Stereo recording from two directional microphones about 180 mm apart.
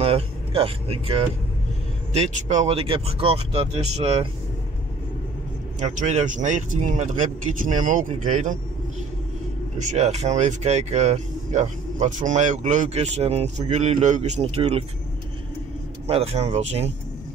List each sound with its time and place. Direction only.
0.0 s speech: 30° right (ahead or behind)
5.8 s speech: 40° right (ahead or behind)
9.8 s speech: 40° right (ahead or behind)
16.1 s speech: 35° right (ahead or behind)